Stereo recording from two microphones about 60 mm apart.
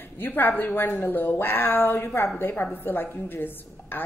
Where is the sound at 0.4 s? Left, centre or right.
Left.